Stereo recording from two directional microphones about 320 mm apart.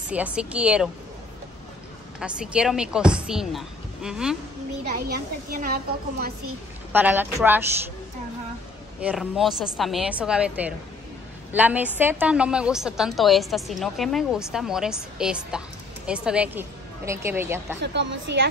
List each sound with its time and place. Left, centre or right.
0.1 s a woman's voice: centre
2.1 s a woman's voice: centre
4.8 s a woman's voice: right
6.9 s a woman's voice: centre
9.0 s a woman's voice: centre
17.7 s a woman's voice: right